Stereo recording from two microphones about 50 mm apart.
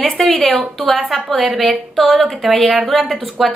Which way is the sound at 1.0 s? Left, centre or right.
Centre.